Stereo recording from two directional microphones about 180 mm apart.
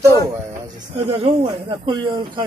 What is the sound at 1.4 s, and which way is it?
A man's voice, 25° right (ahead or behind).